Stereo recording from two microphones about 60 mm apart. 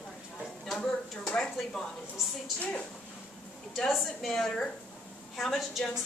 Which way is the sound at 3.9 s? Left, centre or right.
Centre.